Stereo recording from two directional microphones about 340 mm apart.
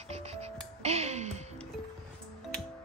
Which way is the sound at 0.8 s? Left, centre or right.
Centre.